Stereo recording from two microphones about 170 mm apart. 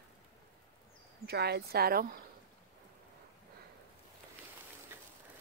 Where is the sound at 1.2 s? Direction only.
70° right (ahead or behind).